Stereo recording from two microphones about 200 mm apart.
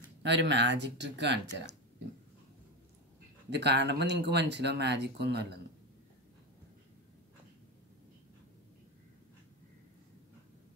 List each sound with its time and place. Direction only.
0.2 s speech: 60° right (ahead or behind)
3.4 s speech: 60° right (ahead or behind)